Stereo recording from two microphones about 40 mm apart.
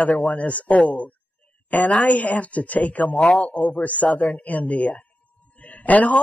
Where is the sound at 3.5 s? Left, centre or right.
Left.